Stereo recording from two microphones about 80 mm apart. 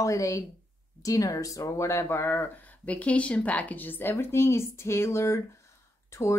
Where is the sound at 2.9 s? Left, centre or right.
Centre.